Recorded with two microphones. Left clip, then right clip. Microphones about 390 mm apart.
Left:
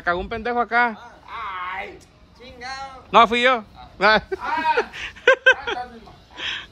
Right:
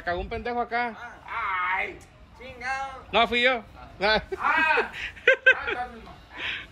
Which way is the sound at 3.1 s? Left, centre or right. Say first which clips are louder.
Left 7 dB; centre.